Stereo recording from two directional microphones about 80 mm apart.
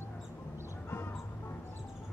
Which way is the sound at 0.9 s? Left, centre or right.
Left.